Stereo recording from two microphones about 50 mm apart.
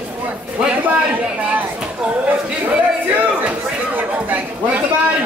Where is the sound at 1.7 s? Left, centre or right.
Centre.